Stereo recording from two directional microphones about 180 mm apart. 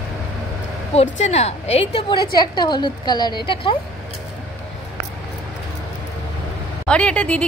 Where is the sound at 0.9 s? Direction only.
35° left (ahead or behind).